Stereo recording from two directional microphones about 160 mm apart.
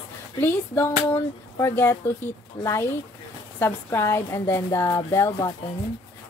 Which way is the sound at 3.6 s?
15° left (ahead or behind).